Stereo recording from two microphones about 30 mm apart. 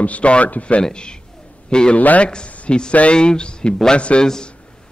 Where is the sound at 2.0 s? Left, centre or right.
Left.